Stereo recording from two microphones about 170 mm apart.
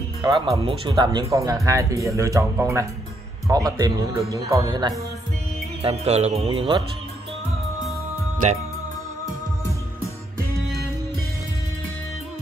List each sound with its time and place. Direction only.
0.2 s speech: 25° right (ahead or behind)
5.8 s speech: 35° right (ahead or behind)